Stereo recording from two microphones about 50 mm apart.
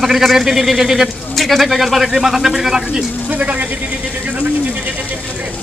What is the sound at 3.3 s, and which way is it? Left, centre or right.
Speech, right.